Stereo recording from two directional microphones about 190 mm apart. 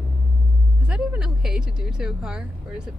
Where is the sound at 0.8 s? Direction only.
5° right (ahead or behind).